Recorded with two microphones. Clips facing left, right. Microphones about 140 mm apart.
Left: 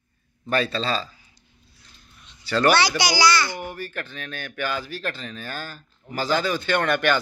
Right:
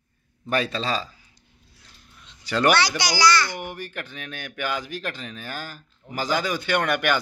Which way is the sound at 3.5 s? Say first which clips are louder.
Left 1 dB; 15° right (ahead or behind).